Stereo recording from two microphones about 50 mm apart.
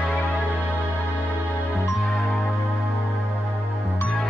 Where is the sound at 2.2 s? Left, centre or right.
Centre.